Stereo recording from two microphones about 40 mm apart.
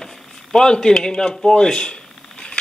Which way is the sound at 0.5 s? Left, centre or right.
Centre.